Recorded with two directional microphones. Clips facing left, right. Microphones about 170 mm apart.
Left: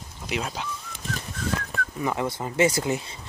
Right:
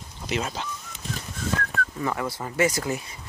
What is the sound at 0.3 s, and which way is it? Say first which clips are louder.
Speech: right 1 dB; 5° left (ahead or behind).